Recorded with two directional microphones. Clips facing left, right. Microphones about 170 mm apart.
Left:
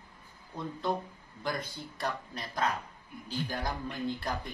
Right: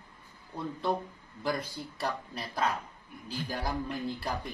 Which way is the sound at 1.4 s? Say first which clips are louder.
Right 3 dB; 5° right (ahead or behind).